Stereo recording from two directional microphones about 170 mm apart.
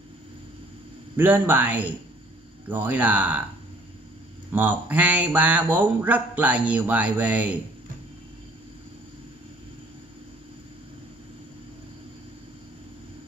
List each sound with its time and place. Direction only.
1.1 s speech: 10° right (ahead or behind)
4.5 s speech: 10° right (ahead or behind)